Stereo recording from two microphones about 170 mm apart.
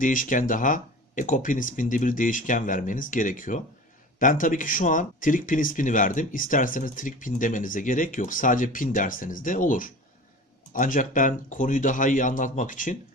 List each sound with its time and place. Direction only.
0.0 s speech: 50° left (ahead or behind)